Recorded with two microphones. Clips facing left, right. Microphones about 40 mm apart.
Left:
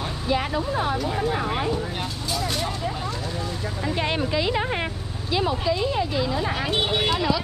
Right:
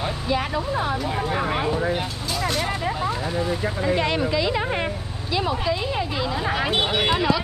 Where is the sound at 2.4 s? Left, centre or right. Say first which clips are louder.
Right 4 dB; centre.